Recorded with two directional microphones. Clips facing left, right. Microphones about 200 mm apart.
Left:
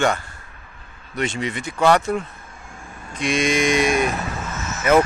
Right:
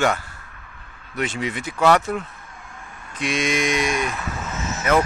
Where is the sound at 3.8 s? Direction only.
50° left (ahead or behind).